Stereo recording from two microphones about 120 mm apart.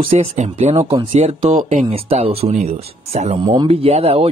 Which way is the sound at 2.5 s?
65° right (ahead or behind).